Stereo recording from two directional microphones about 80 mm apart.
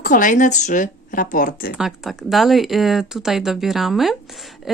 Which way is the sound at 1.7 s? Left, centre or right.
Centre.